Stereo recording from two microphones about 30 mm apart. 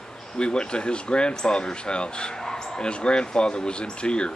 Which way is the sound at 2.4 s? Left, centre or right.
Centre.